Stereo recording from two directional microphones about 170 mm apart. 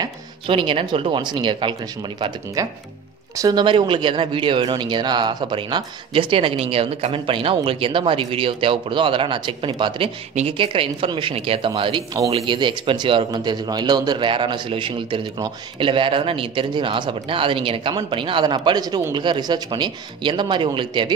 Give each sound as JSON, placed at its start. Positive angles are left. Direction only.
{"t": 0.0, "sound": "speech", "side_deg": -30}